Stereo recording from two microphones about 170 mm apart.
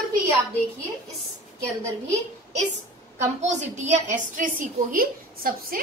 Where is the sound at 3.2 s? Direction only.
45° right (ahead or behind).